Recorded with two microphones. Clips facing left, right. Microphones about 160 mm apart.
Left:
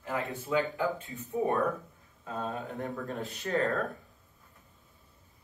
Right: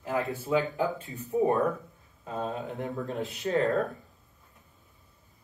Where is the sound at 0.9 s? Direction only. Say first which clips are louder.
Right 5 dB; 35° right (ahead or behind).